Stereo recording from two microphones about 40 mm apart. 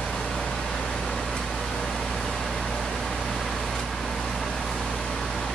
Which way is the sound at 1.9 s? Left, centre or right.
Centre.